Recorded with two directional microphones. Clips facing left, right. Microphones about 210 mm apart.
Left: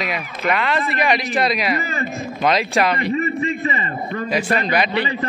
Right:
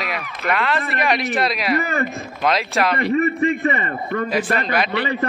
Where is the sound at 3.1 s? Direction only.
55° right (ahead or behind).